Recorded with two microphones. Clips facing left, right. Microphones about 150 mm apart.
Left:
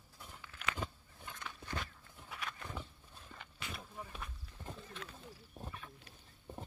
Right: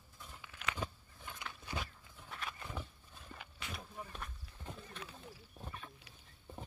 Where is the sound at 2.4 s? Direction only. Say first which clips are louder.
Even; 10° right (ahead or behind).